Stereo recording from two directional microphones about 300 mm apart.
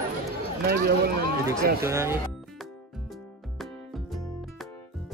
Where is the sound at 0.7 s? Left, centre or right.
Right.